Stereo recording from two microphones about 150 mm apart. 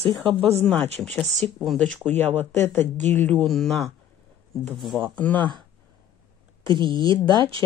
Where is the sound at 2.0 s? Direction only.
15° left (ahead or behind).